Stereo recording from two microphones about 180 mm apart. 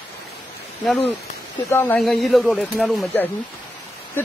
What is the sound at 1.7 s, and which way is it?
Speech, 10° left (ahead or behind).